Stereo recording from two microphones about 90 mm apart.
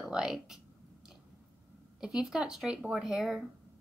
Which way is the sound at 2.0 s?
5° right (ahead or behind).